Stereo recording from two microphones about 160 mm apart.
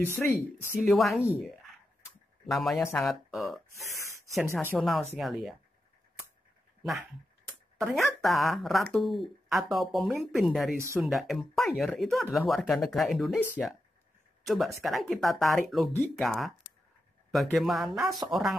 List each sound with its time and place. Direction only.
0.0 s speech: 15° left (ahead or behind)
0.7 s speech: centre (ahead or behind)
2.4 s speech: centre (ahead or behind)
4.5 s speech: 15° left (ahead or behind)
4.7 s speech: centre (ahead or behind)
7.0 s a sound: 20° right (ahead or behind)
7.8 s speech: centre (ahead or behind)
14.4 s speech: centre (ahead or behind)